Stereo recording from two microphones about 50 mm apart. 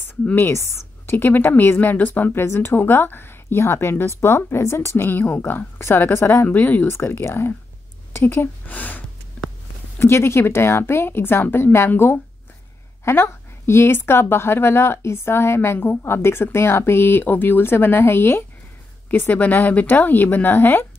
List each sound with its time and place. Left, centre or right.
0.4 s a woman's voice: left
1.1 s speech: left
2.4 s a woman's voice: left
2.7 s a woman's voice: left
6.4 s speech: left
6.9 s a woman's voice: left
8.6 s speech: left
9.9 s a woman's voice: left
19.0 s speech: left